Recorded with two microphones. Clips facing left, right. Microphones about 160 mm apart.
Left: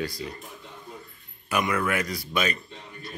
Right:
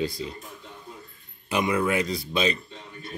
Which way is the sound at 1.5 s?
20° right (ahead or behind).